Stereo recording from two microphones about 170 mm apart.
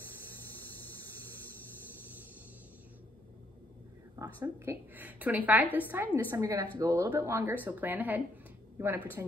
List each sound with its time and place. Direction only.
4.2 s a woman's voice: 15° right (ahead or behind)